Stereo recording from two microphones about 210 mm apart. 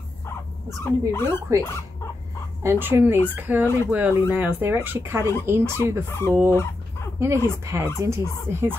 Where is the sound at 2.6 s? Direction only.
10° right (ahead or behind).